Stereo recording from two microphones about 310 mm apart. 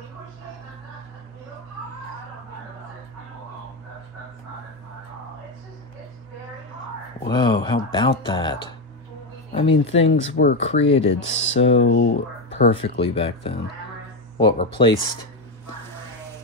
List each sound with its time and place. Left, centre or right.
7.2 s speech: centre
10.0 s speech: left
10.7 s speech: centre
11.2 s speech: left
12.7 s speech: centre